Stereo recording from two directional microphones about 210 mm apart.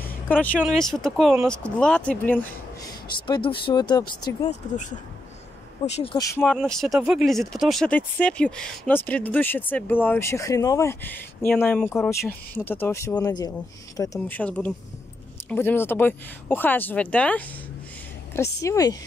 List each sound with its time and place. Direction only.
0.0 s speech: 5° left (ahead or behind)
3.3 s speech: 25° left (ahead or behind)
4.5 s speech: 35° left (ahead or behind)
6.1 s speech: 15° left (ahead or behind)
6.4 s speech: centre (ahead or behind)